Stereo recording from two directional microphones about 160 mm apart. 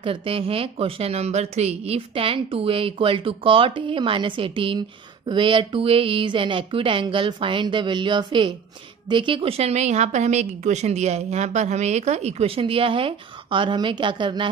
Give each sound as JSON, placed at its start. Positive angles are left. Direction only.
{"t": 0.0, "sound": "speech", "side_deg": -35}